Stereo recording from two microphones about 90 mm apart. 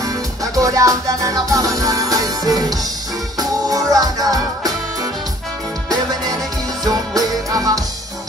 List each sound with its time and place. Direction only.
0.0 s music: 40° right (ahead or behind)
5.9 s music: 45° right (ahead or behind)